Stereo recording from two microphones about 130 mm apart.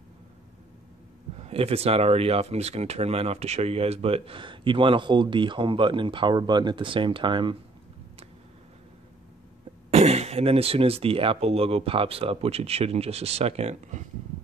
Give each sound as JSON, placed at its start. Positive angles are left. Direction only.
{"t": 1.4, "sound": "speech", "side_deg": -50}
{"t": 9.8, "sound": "speech", "side_deg": -55}